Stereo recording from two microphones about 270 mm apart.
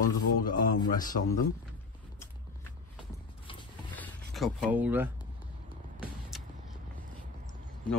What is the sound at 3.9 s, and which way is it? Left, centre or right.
Zipper, centre.